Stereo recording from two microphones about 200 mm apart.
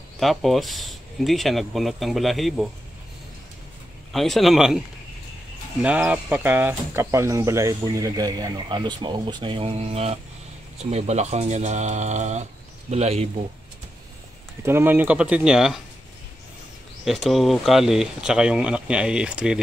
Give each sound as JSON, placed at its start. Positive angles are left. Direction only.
{"t": 0.2, "sound": "speech", "side_deg": 0}
{"t": 4.1, "sound": "speech", "side_deg": 0}
{"t": 14.6, "sound": "speech", "side_deg": -10}
{"t": 17.0, "sound": "speech", "side_deg": 0}